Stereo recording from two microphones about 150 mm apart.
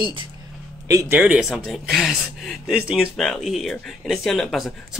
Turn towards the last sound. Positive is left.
turn(degrees=0)  # may be behind; listen again after turning